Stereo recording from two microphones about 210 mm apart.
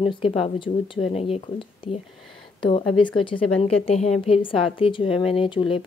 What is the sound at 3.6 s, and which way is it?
Speech, 30° left (ahead or behind).